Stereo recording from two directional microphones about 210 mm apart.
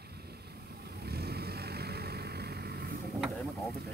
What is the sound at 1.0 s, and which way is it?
Vehicle, 50° right (ahead or behind).